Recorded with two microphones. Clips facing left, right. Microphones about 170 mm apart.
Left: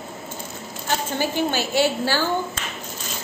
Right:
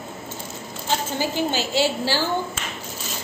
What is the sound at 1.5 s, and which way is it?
Speech, 55° left (ahead or behind).